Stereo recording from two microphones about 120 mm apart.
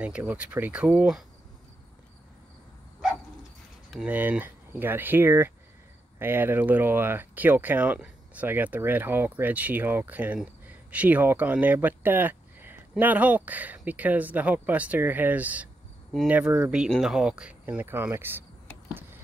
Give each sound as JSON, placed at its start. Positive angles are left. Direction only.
{"t": 0.0, "sound": "speech", "side_deg": -10}
{"t": 4.0, "sound": "speech", "side_deg": -15}
{"t": 16.7, "sound": "speech", "side_deg": -5}